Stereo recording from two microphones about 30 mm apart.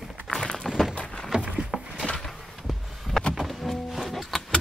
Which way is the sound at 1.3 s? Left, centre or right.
Right.